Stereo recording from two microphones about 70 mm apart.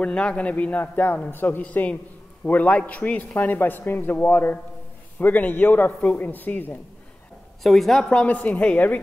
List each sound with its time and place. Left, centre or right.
0.0 s a man's voice: centre
7.6 s a woman's voice: centre
8.1 s a man's voice: centre